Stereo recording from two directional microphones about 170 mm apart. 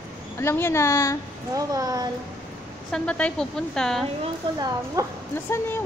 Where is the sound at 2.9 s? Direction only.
5° left (ahead or behind).